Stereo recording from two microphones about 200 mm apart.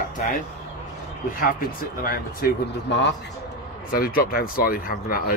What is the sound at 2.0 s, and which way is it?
Speech, 50° left (ahead or behind).